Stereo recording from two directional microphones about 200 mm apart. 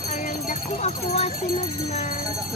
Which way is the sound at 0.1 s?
40° left (ahead or behind).